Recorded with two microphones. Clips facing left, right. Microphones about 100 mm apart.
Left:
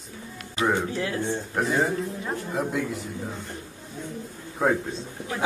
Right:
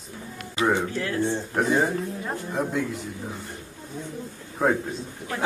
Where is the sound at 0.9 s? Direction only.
15° left (ahead or behind).